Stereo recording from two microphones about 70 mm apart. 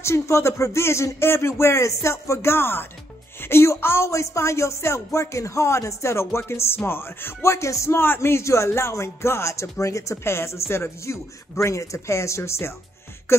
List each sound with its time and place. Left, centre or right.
0.0 s speech: left